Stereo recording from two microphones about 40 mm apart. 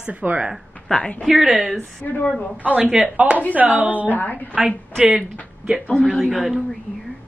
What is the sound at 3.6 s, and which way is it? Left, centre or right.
Speech, right.